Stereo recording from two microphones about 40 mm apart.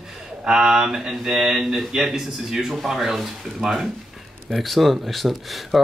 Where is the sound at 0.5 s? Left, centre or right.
Centre.